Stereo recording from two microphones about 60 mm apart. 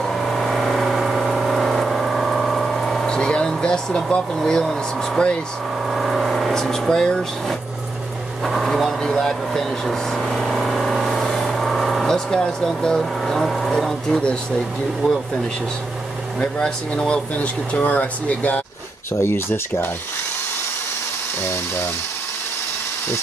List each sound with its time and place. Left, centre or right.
0.0 s vehicle: centre
4.4 s speech: centre
5.9 s vehicle: centre
8.5 s speech: centre
9.0 s vehicle: centre
13.7 s speech: centre
16.3 s speech: centre
19.1 s speech: left